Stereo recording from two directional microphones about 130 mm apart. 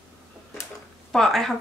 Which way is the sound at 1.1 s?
5° left (ahead or behind).